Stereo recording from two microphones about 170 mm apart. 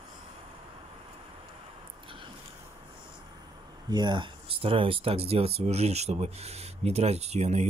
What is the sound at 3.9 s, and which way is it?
Speech, 25° right (ahead or behind).